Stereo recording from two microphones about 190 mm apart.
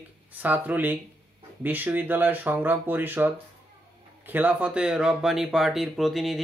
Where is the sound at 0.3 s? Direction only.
10° right (ahead or behind).